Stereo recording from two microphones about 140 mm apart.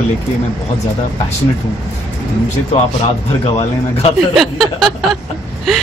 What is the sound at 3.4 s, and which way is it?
Speech, 50° left (ahead or behind).